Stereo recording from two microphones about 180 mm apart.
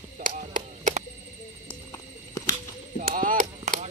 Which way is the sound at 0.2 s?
50° right (ahead or behind).